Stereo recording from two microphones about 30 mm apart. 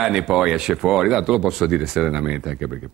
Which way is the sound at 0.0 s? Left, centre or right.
Centre.